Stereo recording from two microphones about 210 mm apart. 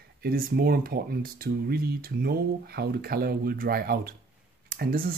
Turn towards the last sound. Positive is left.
turn(degrees=-45)  # may be behind; listen again after turning